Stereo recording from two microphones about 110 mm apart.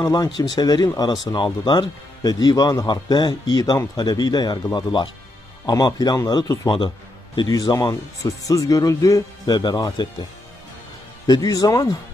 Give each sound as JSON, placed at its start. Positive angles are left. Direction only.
{"t": 0.0, "sound": "speech", "side_deg": 35}
{"t": 11.2, "sound": "speech", "side_deg": 35}